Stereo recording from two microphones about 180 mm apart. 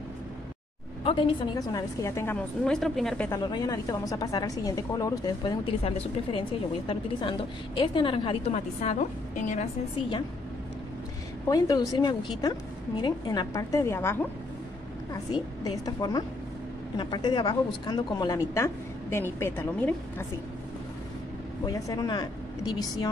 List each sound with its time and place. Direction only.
1.0 s a woman's voice: 30° left (ahead or behind); by 3.3 s centre (ahead or behind)
3.3 s a woman's voice: 20° left (ahead or behind); by 9.7 s 45° left (ahead or behind)
11.4 s a woman's voice: 20° left (ahead or behind)
15.6 s a woman's voice: 20° left (ahead or behind)
21.6 s a woman's voice: 20° left (ahead or behind)